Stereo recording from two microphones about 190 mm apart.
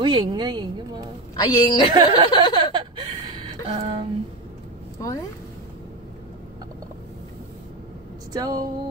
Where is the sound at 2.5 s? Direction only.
25° right (ahead or behind).